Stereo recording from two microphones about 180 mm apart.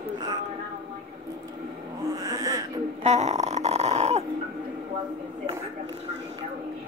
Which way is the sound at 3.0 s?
40° right (ahead or behind).